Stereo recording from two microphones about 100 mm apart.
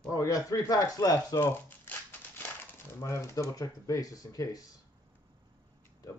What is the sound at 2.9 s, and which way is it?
Speech, 30° left (ahead or behind).